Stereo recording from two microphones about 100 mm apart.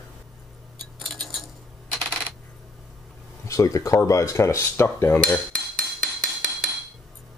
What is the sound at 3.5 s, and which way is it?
Cutlery, 35° left (ahead or behind).